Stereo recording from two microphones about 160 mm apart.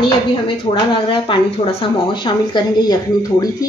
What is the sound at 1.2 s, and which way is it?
A woman's voice, 30° left (ahead or behind).